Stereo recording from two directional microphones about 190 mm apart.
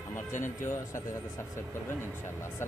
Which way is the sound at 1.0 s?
15° left (ahead or behind).